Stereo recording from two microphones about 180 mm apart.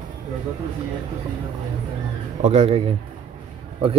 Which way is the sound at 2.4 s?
35° right (ahead or behind).